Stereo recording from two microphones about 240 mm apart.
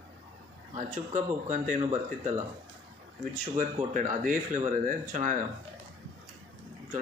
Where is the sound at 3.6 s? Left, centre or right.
Right.